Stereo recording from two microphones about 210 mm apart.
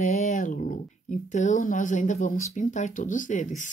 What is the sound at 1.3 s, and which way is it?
Speech, 35° left (ahead or behind).